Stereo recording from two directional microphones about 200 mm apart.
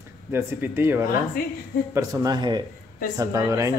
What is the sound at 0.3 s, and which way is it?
Speech, 10° right (ahead or behind).